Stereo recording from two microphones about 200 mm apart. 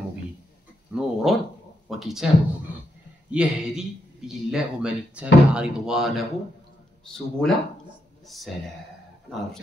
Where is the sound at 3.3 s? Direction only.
5° right (ahead or behind).